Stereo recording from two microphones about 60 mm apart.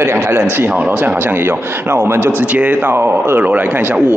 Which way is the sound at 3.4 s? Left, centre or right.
Right.